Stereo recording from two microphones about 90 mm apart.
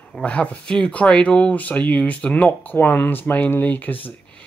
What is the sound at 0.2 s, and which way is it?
Speech, 15° left (ahead or behind).